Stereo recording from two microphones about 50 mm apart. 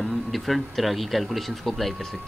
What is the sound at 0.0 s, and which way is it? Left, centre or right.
Speech, centre.